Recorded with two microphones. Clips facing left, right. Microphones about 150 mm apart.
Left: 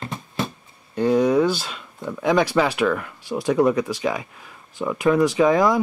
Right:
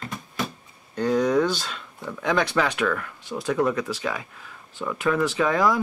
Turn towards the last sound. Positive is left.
turn(degrees=15)  # may be behind; listen again after turning